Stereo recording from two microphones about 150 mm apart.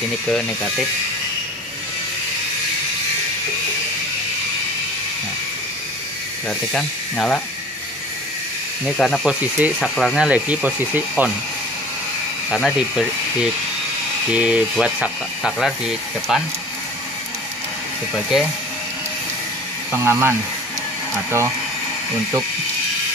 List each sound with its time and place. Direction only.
0.3 s speech: centre (ahead or behind)
6.7 s speech: 5° left (ahead or behind)
8.8 s speech: 5° left (ahead or behind)
9.2 s speech: 5° right (ahead or behind)
12.4 s speech: centre (ahead or behind)
18.1 s speech: centre (ahead or behind)
19.9 s speech: 15° right (ahead or behind)